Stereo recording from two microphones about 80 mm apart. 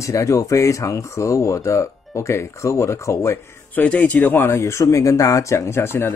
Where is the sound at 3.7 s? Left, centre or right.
Centre.